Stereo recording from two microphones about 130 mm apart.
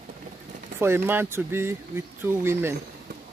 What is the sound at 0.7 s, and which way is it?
Speech, 20° right (ahead or behind).